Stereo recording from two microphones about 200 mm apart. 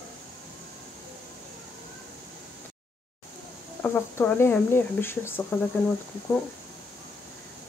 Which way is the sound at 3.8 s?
10° left (ahead or behind).